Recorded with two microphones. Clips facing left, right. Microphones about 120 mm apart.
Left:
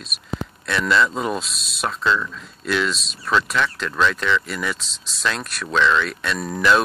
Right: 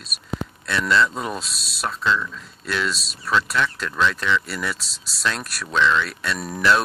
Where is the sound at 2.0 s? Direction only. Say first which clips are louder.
Left 1 dB; 15° left (ahead or behind).